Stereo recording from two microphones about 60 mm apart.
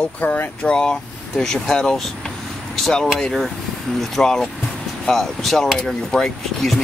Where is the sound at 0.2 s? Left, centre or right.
Left.